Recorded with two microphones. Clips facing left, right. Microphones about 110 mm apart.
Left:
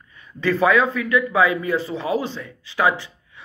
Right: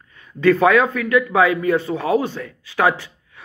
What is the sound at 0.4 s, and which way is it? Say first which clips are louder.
Speech: right 4 dB; 55° right (ahead or behind).